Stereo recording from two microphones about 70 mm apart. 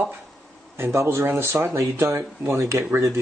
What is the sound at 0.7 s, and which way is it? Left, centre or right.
Speech, right.